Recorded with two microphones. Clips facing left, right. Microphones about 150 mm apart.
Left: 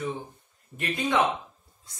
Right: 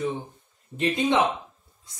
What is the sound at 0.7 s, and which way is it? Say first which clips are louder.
Speech: right 3 dB; 20° right (ahead or behind).